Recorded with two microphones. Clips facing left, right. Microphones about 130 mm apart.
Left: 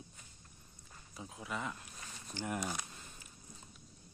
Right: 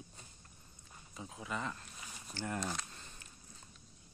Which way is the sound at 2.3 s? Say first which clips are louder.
Even; 15° left (ahead or behind).